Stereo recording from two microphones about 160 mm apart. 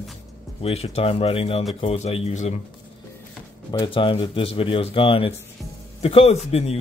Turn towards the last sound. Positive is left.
turn(degrees=40)  # may be behind; listen again after turning